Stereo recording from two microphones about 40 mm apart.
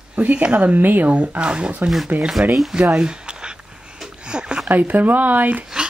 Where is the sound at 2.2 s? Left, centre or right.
Centre.